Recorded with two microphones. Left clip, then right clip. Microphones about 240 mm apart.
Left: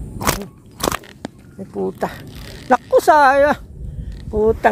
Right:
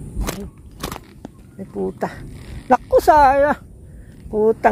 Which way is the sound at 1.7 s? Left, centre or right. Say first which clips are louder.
Left 2 dB; centre.